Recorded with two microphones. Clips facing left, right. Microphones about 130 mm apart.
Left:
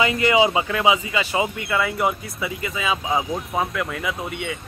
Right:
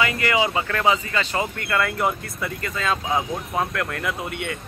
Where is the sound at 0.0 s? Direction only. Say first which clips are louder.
Left 4 dB; 20° left (ahead or behind).